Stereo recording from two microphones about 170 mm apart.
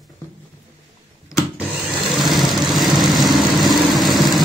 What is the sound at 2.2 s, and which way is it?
Vehicle, centre (ahead or behind).